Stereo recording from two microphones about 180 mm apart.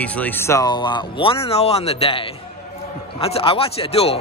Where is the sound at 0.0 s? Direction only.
10° left (ahead or behind).